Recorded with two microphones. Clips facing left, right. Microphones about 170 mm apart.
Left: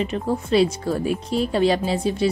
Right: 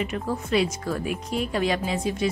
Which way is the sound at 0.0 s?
30° left (ahead or behind).